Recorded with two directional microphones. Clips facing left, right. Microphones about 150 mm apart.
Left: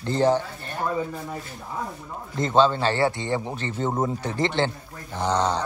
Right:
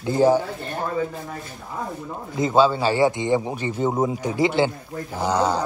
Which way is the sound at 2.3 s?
5° right (ahead or behind).